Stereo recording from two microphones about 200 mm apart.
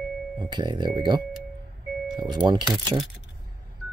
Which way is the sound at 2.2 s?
20° right (ahead or behind).